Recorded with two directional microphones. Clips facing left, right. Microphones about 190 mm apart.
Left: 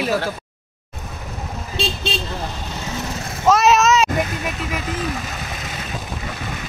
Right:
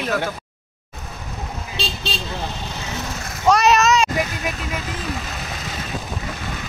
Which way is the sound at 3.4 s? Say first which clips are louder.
Left 1 dB; centre (ahead or behind).